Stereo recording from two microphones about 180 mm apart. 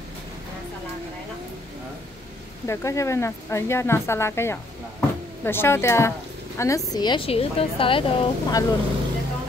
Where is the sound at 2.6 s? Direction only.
15° left (ahead or behind).